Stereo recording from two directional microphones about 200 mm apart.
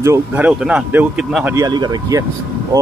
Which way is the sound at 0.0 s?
10° right (ahead or behind).